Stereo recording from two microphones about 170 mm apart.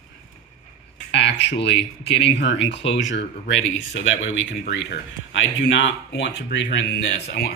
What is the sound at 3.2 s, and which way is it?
Speech, 90° left.